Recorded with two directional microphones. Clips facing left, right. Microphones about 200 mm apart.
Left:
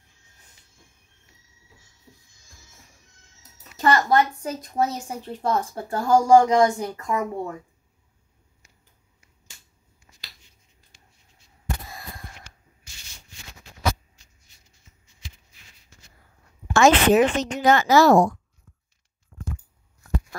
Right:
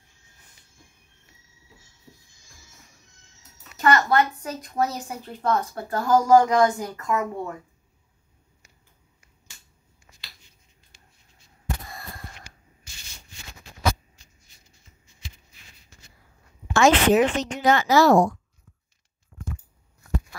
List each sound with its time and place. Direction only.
3.8 s a woman's voice: 30° left (ahead or behind)
16.6 s speech: 45° left (ahead or behind)